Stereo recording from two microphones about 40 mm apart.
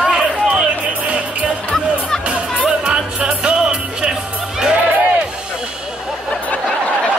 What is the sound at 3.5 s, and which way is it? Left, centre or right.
Music, right.